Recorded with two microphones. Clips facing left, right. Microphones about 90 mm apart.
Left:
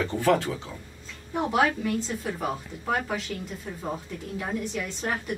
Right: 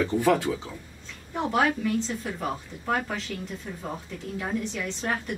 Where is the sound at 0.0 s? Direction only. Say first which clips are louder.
Right 1 dB; 10° right (ahead or behind).